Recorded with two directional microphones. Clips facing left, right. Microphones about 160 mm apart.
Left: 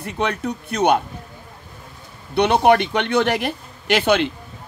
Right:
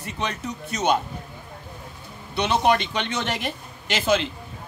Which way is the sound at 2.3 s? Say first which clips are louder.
Left 6 dB; 60° left (ahead or behind).